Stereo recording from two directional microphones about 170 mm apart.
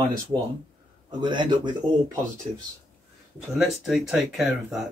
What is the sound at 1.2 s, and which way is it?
Speech, 25° right (ahead or behind).